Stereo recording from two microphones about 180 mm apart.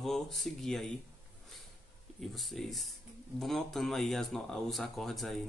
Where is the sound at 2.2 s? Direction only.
Centre (ahead or behind).